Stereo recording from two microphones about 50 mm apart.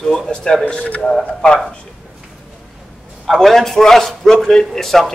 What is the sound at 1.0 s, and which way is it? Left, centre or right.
Speech, centre.